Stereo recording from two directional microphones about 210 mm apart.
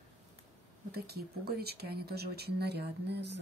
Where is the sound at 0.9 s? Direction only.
50° right (ahead or behind).